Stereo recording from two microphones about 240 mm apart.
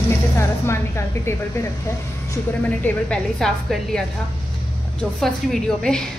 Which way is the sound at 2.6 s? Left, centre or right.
Centre.